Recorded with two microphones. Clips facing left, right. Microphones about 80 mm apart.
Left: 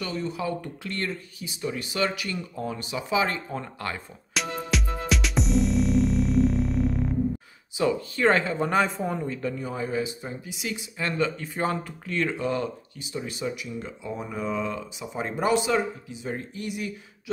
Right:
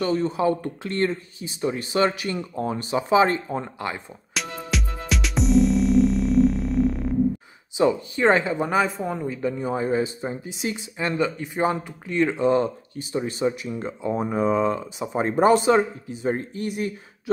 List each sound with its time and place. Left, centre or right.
0.0 s speech: right
4.3 s music: centre
7.7 s speech: right